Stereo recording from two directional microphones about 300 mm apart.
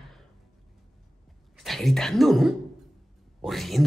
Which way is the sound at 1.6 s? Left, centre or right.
Centre.